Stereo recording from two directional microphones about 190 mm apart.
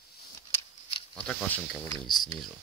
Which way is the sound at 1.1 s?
5° left (ahead or behind).